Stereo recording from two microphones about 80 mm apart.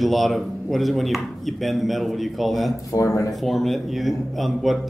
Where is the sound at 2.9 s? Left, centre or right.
Left.